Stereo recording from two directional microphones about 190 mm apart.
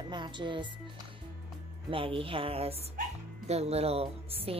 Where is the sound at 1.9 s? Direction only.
30° right (ahead or behind).